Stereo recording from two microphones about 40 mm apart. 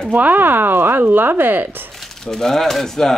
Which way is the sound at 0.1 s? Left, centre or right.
Right.